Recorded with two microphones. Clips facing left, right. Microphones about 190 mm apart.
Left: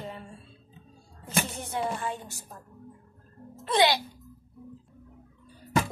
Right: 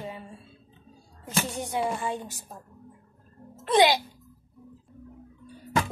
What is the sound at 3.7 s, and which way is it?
Speech, 20° right (ahead or behind).